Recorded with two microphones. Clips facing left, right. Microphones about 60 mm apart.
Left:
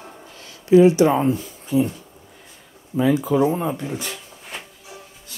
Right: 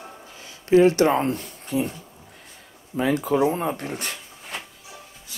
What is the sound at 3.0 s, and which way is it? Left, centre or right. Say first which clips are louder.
Speech: left 3 dB; right.